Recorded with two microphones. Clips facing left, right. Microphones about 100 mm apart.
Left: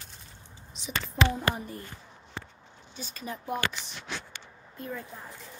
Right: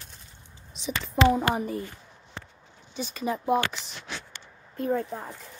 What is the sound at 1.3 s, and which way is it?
Speech, 75° right (ahead or behind).